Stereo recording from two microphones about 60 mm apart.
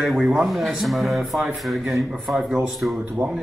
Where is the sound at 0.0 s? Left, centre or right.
Centre.